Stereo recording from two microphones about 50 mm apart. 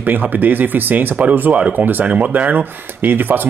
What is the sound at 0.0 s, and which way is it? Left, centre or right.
Speech, right.